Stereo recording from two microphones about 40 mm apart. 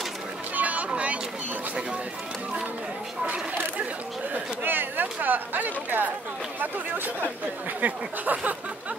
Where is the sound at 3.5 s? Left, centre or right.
Right.